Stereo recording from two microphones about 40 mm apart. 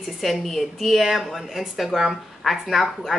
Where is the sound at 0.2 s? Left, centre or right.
Centre.